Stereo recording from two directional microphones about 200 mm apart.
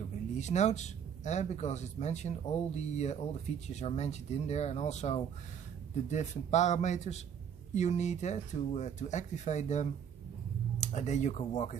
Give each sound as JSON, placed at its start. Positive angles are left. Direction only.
{"t": 0.4, "sound": "speech", "side_deg": 35}